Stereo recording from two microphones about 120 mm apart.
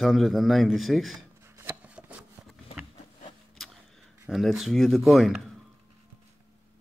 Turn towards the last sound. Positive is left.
turn(degrees=0)  # may be behind; listen again after turning